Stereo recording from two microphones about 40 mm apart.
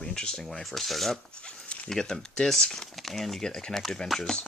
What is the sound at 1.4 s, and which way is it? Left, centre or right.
Dog, left.